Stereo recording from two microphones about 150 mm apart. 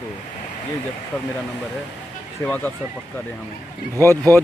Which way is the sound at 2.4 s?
15° left (ahead or behind).